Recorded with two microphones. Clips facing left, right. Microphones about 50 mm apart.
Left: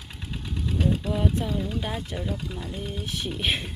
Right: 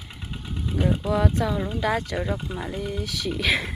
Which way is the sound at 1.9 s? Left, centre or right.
Right.